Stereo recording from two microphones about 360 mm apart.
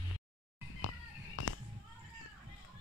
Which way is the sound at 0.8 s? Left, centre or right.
Left.